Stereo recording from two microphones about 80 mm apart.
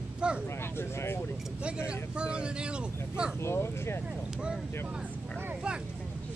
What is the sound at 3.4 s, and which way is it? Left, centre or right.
Speech, left.